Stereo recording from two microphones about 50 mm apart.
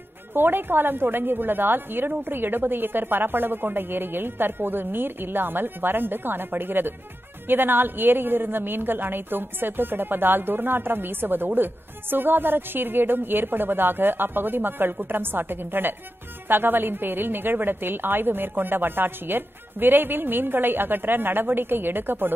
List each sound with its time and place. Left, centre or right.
0.3 s a woman's voice: right